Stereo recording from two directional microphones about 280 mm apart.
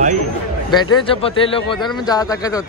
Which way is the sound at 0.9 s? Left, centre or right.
Centre.